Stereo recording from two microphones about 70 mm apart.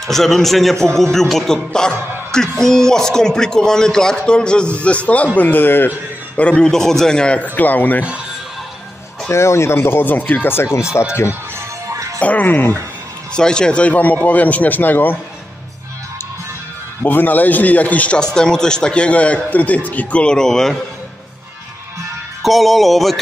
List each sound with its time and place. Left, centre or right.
0.0 s music: centre
1.1 s a man's voice: centre; by 6.4 s left
6.4 s a man's voice: centre
6.7 s a man's voice: centre
7.5 s a man's voice: left
9.3 s speech: left
11.9 s music: right
12.2 s a man's voice: left
13.3 s a man's voice: centre; by 15.1 s left
17.0 s a man's voice: left; by 20.8 s centre
22.4 s music: centre